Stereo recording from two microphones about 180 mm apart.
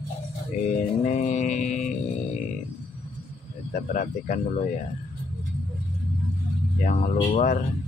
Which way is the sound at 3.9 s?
45° left (ahead or behind).